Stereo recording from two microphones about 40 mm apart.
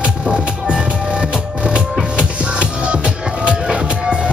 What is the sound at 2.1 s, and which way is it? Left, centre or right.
Music, right.